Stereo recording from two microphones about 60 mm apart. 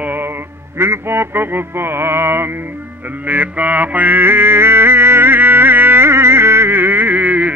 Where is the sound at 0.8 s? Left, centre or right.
Right.